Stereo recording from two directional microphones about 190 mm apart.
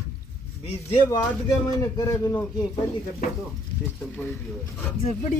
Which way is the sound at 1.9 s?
20° left (ahead or behind).